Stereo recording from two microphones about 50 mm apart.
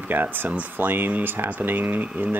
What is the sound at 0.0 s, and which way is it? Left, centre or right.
Speech, right.